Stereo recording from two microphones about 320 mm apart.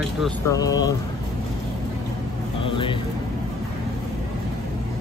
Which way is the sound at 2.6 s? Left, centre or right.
Centre.